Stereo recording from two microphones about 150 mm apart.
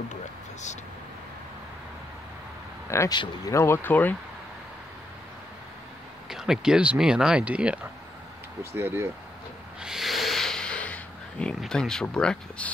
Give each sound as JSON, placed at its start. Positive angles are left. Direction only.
{"t": 0.1, "sound": "a sound", "side_deg": 50}
{"t": 2.9, "sound": "speech", "side_deg": 20}
{"t": 6.2, "sound": "speech", "side_deg": -5}
{"t": 9.8, "sound": "snort", "side_deg": -5}